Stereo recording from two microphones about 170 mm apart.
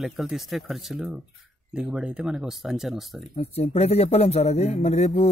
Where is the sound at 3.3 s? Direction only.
35° left (ahead or behind).